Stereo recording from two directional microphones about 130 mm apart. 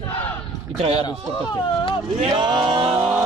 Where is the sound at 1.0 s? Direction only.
35° left (ahead or behind).